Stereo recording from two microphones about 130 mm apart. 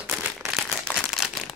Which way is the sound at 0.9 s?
5° left (ahead or behind).